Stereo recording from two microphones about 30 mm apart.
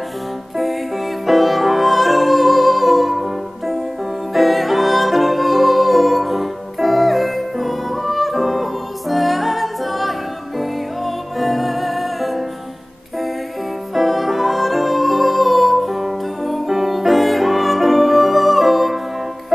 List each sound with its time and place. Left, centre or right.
0.6 s music: centre
13.9 s music: centre